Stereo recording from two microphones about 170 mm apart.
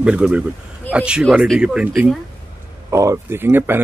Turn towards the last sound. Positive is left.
turn(degrees=-10)  # may be behind; listen again after turning